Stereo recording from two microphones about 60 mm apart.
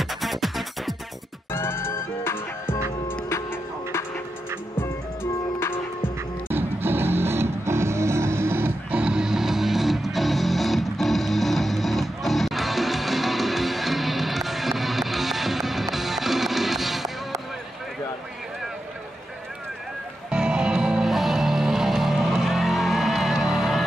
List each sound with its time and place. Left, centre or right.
0.0 s music: centre
1.5 s music: left
4.7 s music: left
6.5 s music: right
8.9 s music: centre
20.2 s music: centre